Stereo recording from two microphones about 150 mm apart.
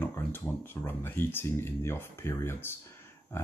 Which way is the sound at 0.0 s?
10° left (ahead or behind).